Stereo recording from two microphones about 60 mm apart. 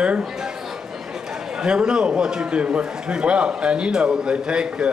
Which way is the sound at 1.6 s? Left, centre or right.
Centre.